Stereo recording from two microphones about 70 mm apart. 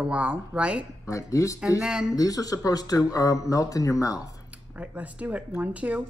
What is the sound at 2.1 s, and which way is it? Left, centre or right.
Speech, left.